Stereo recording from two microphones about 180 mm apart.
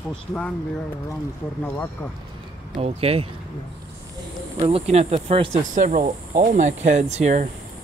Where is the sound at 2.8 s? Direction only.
35° right (ahead or behind).